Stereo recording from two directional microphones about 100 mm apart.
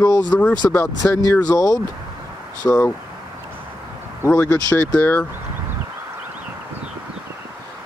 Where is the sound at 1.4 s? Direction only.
35° left (ahead or behind).